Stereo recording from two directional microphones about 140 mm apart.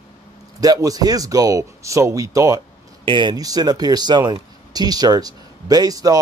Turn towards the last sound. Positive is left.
turn(degrees=-25)  # may be behind; listen again after turning